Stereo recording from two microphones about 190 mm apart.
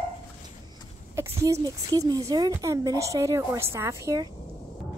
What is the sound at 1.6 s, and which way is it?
A woman's voice, 20° right (ahead or behind).